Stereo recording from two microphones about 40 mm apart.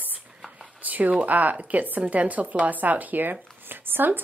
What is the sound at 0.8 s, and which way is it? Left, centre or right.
Speech, right.